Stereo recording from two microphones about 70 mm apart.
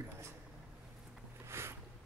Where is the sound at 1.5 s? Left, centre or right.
Right.